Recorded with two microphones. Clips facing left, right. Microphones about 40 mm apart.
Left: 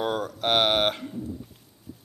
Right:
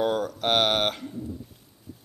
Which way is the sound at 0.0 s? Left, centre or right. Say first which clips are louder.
Right 2 dB; centre.